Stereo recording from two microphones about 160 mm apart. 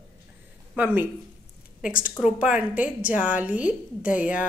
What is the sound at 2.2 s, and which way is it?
A woman's voice, 5° right (ahead or behind).